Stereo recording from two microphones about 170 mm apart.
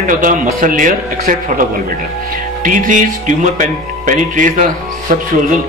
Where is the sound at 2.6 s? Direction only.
50° right (ahead or behind).